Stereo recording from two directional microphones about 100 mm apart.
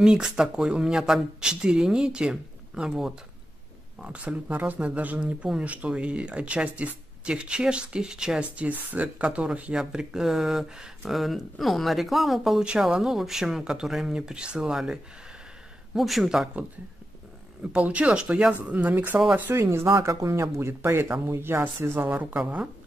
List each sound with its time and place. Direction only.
0.0 s speech: 5° right (ahead or behind)
17.6 s speech: 15° right (ahead or behind)